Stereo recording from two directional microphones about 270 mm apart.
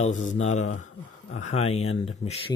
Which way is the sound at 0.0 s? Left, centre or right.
Left.